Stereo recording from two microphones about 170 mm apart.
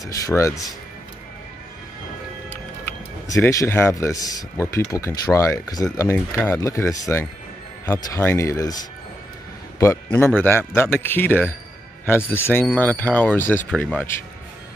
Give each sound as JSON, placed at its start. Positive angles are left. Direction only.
{"t": 0.0, "sound": "speech", "side_deg": 20}
{"t": 3.3, "sound": "speech", "side_deg": 15}
{"t": 10.1, "sound": "speech", "side_deg": 10}